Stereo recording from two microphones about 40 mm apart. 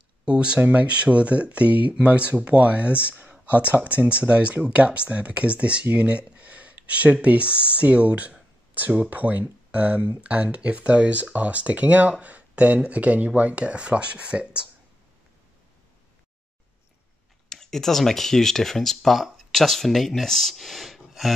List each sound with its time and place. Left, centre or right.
0.2 s speech: right
17.5 s speech: centre